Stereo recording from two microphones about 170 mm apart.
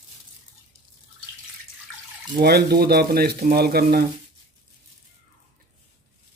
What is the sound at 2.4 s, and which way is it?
Speech, 70° right (ahead or behind).